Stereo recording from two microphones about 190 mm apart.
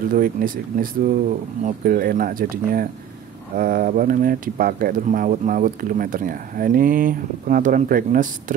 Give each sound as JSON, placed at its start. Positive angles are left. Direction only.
{"t": 0.1, "sound": "speech", "side_deg": -50}